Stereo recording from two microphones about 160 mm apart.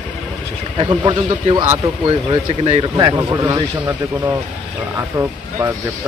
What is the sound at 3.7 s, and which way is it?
Speech, 10° right (ahead or behind).